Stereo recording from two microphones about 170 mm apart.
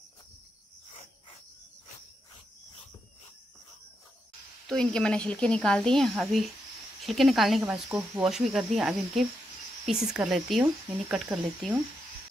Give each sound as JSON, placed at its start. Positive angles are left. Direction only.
{"t": 4.6, "sound": "speech", "side_deg": 5}